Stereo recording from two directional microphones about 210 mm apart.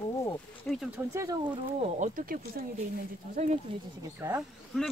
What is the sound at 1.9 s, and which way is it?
Speech, 40° right (ahead or behind).